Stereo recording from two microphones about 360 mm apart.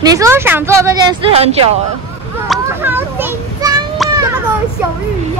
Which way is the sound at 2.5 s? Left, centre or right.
Centre.